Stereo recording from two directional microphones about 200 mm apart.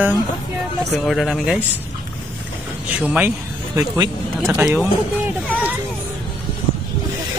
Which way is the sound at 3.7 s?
15° right (ahead or behind).